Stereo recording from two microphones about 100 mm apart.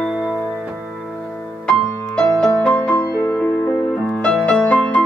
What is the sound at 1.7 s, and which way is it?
Music, 5° left (ahead or behind).